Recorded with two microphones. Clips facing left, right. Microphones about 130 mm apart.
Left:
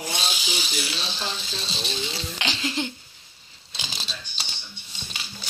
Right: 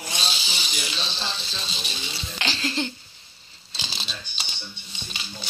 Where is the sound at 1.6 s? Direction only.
30° left (ahead or behind).